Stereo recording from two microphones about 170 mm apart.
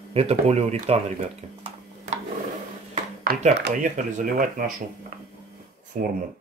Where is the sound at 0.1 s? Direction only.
35° right (ahead or behind).